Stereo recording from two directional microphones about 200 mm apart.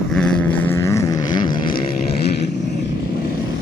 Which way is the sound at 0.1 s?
5° left (ahead or behind).